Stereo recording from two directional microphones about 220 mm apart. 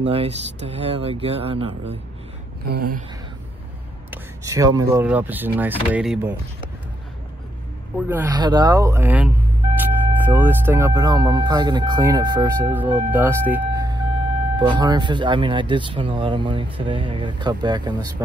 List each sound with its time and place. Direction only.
0.0 s speech: 25° right (ahead or behind)
2.7 s a sound: 40° right (ahead or behind)
4.1 s speech: 15° right (ahead or behind)
8.1 s speech: 15° right (ahead or behind)